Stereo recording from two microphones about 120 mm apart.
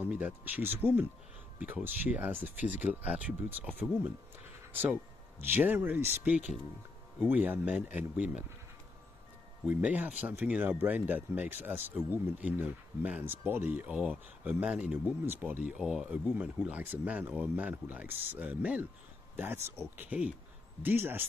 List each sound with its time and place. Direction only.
0.0 s speech: 15° right (ahead or behind)
5.4 s speech: 15° right (ahead or behind)
9.7 s speech: 15° right (ahead or behind)